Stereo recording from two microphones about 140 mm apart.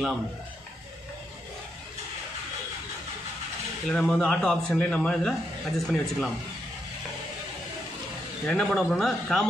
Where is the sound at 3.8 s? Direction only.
5° left (ahead or behind).